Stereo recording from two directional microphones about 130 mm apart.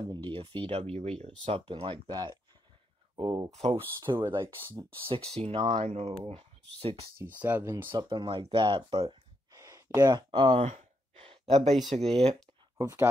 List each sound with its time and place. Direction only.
0.0 s speech: 35° right (ahead or behind); by 1.6 s 55° right (ahead or behind)
1.7 s speech: 40° right (ahead or behind)
3.5 s speech: 50° right (ahead or behind)
4.0 s speech: 35° right (ahead or behind)
5.4 s speech: 55° right (ahead or behind)
6.2 s speech: 45° right (ahead or behind)
7.2 s speech: 15° right (ahead or behind)
7.9 s speech: 35° right (ahead or behind)
9.5 s a sound: 30° right (ahead or behind)
10.6 s sigh: 70° right (ahead or behind)
11.2 s a sound: 50° right (ahead or behind)
11.9 s speech: 55° right (ahead or behind)